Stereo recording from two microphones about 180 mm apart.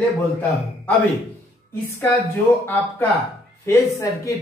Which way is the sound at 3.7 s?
15° left (ahead or behind).